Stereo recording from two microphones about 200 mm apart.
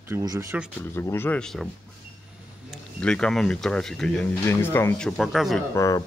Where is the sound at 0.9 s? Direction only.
10° left (ahead or behind).